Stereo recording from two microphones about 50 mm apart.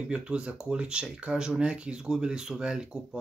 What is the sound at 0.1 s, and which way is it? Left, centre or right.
Speech, right.